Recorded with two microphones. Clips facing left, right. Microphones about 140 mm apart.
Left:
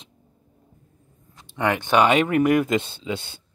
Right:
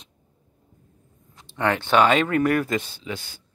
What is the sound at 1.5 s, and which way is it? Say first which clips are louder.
Speech: even; 15° left (ahead or behind).